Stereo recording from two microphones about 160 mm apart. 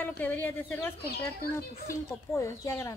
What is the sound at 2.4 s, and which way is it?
Speech, 20° left (ahead or behind).